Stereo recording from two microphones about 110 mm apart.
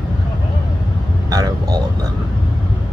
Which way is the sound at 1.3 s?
35° right (ahead or behind).